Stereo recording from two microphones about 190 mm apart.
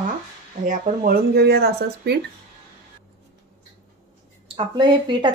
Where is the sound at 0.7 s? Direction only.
50° right (ahead or behind).